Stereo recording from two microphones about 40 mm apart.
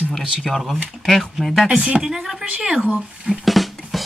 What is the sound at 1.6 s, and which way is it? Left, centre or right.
Speech, right.